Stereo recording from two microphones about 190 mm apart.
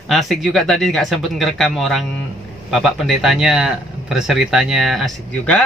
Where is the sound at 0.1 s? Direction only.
Centre (ahead or behind).